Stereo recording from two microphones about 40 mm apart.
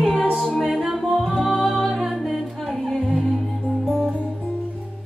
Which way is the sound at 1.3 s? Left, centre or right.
Centre.